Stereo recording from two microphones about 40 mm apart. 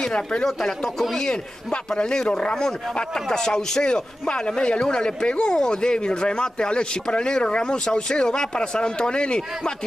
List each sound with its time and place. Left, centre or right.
0.0 s speech: centre